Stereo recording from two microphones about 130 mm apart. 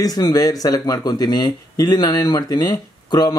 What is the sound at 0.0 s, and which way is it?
Speech, 30° left (ahead or behind).